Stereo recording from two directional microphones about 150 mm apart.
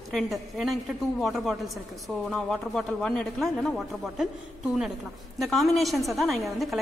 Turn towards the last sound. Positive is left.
turn(degrees=0)  # may be behind; listen again after turning